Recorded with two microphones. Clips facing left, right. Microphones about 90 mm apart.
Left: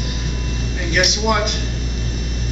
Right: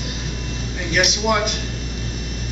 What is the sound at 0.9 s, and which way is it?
Speech, 5° left (ahead or behind).